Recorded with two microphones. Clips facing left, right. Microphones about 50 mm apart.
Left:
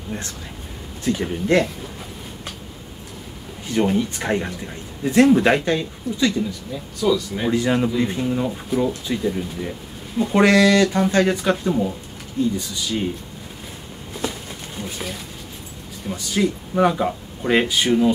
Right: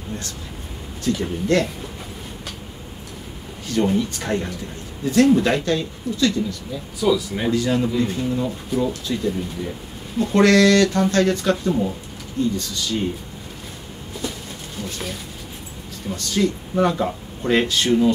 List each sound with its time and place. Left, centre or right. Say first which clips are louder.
1.0 s speech: even; left
3.6 s speech: even; centre
7.0 s speech: even; centre
7.5 s speech: left 1 dB; left
14.8 s a sound: even; centre
16.1 s speech: even; centre